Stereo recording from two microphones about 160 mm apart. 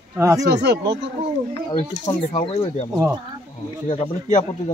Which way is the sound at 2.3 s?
40° left (ahead or behind).